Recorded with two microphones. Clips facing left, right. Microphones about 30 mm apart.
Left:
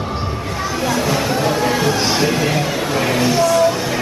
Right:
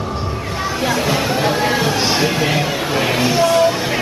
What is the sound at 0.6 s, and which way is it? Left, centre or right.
Chatter, centre.